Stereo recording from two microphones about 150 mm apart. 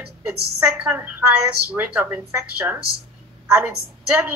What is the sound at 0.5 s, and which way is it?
A woman's voice, 10° right (ahead or behind).